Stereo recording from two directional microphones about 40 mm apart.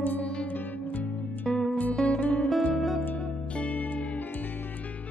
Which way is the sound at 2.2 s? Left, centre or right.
Left.